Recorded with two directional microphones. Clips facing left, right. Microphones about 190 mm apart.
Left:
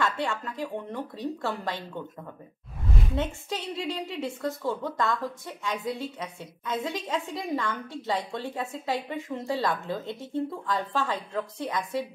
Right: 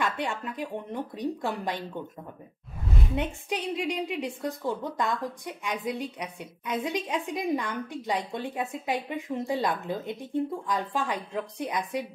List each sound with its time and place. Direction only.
0.0 s speech: 20° right (ahead or behind)
3.4 s a woman's voice: 15° right (ahead or behind)